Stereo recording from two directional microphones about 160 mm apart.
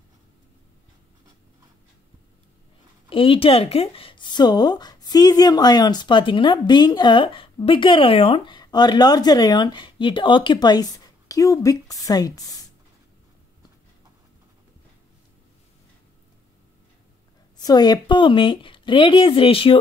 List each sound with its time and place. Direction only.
3.1 s speech: 35° left (ahead or behind)
17.6 s speech: 25° left (ahead or behind)